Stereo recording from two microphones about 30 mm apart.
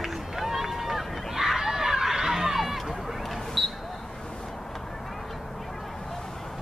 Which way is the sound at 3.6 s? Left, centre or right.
Centre.